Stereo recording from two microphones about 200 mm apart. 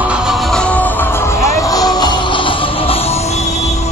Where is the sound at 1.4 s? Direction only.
15° left (ahead or behind).